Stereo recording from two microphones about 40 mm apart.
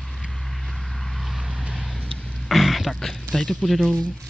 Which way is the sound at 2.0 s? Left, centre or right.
Left.